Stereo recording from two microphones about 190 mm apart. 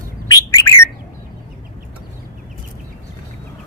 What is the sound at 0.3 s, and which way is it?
Bird, 15° left (ahead or behind).